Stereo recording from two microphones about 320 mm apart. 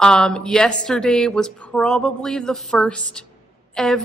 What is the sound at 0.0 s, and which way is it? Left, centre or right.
Speech, centre.